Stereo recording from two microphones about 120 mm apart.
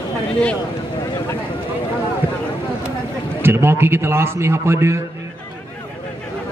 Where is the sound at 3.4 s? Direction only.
20° right (ahead or behind).